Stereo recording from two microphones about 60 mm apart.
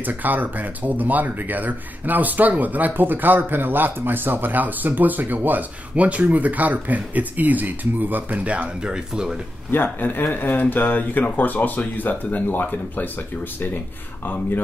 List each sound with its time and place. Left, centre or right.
0.0 s speech: right; by 9.3 s centre
9.7 s speech: left